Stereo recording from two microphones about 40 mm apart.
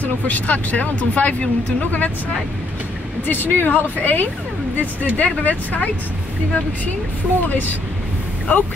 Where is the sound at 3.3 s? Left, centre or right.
Left.